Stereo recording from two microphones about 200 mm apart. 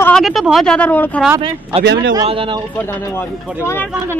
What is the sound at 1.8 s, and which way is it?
Speech, 60° right (ahead or behind).